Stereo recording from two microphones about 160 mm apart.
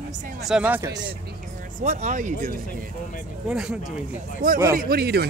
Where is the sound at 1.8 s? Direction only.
50° right (ahead or behind).